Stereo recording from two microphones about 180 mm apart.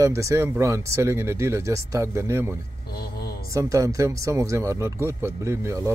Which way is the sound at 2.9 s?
60° left (ahead or behind).